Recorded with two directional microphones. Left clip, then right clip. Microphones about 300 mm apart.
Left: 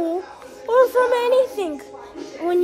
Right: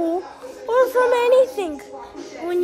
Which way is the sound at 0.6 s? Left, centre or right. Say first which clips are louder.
Left 1 dB; centre.